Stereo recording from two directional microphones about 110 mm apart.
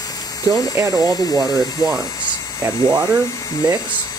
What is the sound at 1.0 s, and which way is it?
Speech, 35° left (ahead or behind).